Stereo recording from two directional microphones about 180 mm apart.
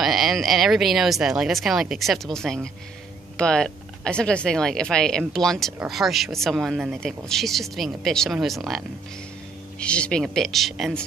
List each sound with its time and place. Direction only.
0.0 s speech: centre (ahead or behind)